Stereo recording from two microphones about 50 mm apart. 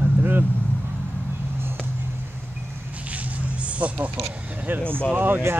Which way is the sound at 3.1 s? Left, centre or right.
Right.